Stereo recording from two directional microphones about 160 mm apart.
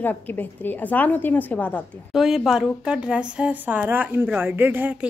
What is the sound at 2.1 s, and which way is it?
Speech, 5° right (ahead or behind).